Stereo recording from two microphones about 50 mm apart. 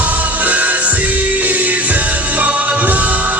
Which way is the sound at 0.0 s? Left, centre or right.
Right.